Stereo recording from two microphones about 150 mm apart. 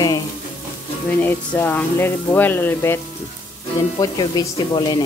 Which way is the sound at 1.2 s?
15° left (ahead or behind).